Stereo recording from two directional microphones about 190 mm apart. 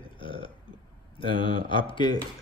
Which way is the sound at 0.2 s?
25° left (ahead or behind).